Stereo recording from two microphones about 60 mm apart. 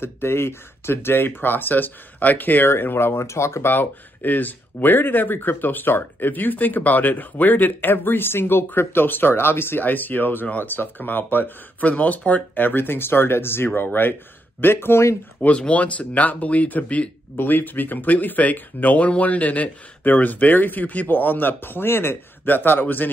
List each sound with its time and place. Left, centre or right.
0.0 s speech: left
15.4 s speech: left